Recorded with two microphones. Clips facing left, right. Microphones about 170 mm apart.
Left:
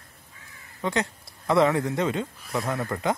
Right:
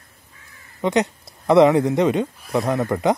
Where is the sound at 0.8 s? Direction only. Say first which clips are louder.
Right 7 dB; 20° right (ahead or behind).